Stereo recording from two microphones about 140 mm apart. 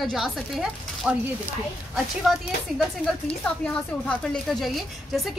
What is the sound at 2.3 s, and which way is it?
Speech, centre (ahead or behind).